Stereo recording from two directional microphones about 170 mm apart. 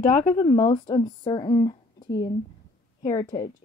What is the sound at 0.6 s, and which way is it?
Speech, 25° left (ahead or behind).